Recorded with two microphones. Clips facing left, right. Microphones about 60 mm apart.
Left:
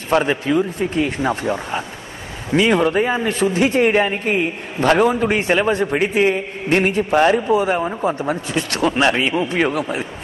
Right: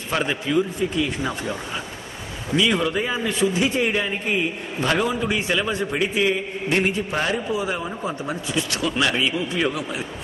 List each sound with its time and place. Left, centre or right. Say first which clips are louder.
0.2 s a man's voice: left 4 dB; left
1.2 s a man's voice: left 7 dB; left